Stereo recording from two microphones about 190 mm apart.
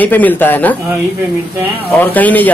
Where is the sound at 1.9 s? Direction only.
10° left (ahead or behind).